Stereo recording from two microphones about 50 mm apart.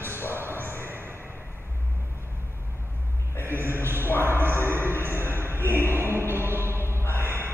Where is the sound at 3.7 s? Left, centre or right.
Right.